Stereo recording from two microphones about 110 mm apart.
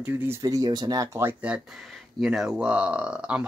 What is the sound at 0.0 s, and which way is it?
Speech, 20° right (ahead or behind).